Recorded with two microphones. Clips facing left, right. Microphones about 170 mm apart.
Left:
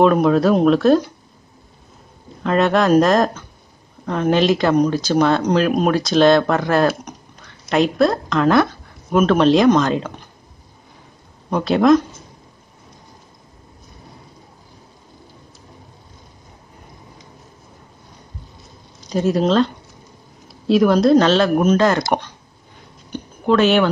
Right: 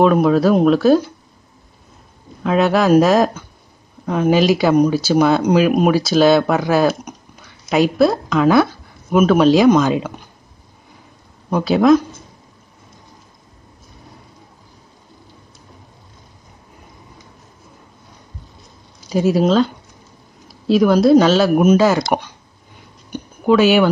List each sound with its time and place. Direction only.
0.0 s speech: centre (ahead or behind)
2.4 s speech: 5° right (ahead or behind)
11.5 s speech: centre (ahead or behind)
19.0 s speech: 5° right (ahead or behind)
23.1 s a sound: 5° right (ahead or behind)